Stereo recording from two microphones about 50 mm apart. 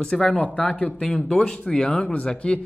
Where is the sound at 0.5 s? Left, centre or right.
Left.